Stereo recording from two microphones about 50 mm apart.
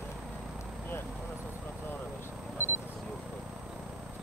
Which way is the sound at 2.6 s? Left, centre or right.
Left.